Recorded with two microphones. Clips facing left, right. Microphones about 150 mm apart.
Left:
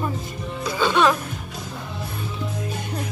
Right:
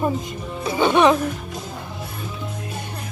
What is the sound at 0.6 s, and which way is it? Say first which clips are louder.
Music: right 3 dB; 20° right (ahead or behind).